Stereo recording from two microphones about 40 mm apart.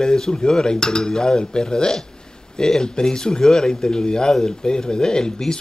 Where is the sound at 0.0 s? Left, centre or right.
Centre.